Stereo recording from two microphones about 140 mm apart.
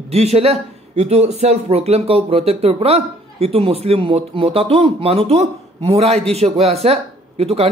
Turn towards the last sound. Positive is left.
turn(degrees=-45)  # may be behind; listen again after turning